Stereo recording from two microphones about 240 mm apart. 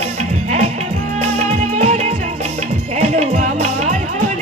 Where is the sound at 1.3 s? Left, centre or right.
Right.